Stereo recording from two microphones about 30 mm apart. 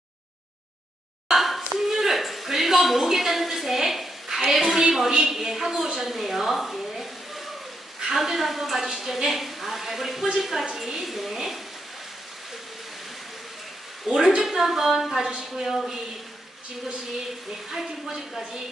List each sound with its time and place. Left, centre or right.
1.3 s hands: centre
1.8 s a sound: centre
3.2 s a woman's voice: centre
14.1 s a woman's voice: centre
14.4 s speech: centre
17.6 s speech: centre